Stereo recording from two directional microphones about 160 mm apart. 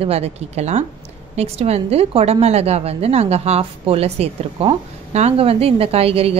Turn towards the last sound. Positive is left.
turn(degrees=-35)  # may be behind; listen again after turning